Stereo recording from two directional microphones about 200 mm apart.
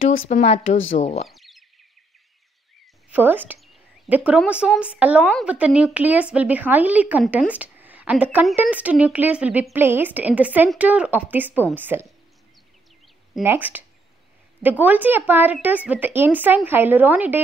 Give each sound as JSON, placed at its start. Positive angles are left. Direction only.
{"t": 0.3, "sound": "speech", "side_deg": 35}
{"t": 1.3, "sound": "chirp", "side_deg": 0}
{"t": 3.1, "sound": "a woman's voice", "side_deg": -10}
{"t": 13.3, "sound": "speech", "side_deg": -10}